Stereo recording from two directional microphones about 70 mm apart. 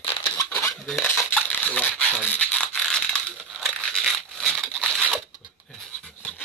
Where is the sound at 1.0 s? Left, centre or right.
Centre.